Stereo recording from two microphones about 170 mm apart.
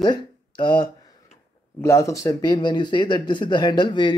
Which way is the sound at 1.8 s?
15° left (ahead or behind).